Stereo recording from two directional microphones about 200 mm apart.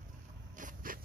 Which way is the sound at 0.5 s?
40° right (ahead or behind).